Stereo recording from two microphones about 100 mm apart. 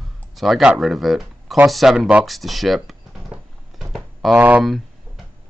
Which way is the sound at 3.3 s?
5° right (ahead or behind).